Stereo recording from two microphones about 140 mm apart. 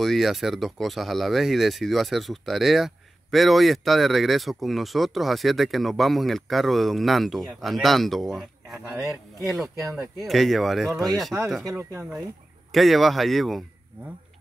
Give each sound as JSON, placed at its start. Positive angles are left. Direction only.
{"t": 0.0, "sound": "speech", "side_deg": 0}
{"t": 11.7, "sound": "speech", "side_deg": -20}
{"t": 12.7, "sound": "speech", "side_deg": 0}